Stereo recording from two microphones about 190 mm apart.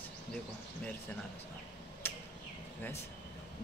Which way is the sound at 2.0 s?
10° left (ahead or behind).